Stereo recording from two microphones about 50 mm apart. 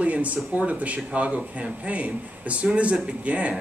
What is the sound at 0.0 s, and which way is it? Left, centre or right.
Speech, right.